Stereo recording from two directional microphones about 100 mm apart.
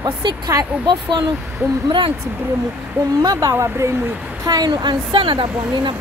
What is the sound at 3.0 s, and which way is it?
Speech, 25° right (ahead or behind).